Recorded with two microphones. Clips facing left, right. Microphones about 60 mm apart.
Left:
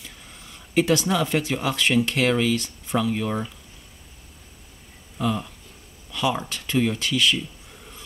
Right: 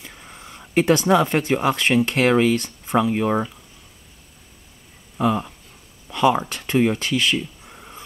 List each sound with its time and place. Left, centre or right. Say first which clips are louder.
0.0 s speech: right 4 dB; right
5.1 s speech: right 5 dB; right
6.0 s a sound: right 7 dB; right
6.5 s speech: right 4 dB; right